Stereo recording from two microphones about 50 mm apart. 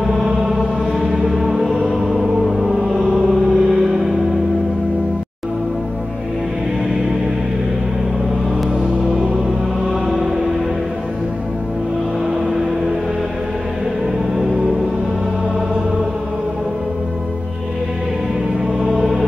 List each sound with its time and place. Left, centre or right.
0.9 s music: right
1.3 s music: centre
3.1 s music: centre
12.3 s a sound: centre
14.3 s music: centre